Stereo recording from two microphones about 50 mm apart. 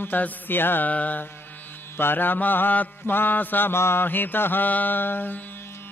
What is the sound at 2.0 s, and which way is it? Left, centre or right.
Mantra, left.